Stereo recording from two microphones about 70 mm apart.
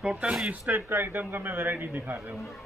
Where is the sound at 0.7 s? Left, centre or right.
Right.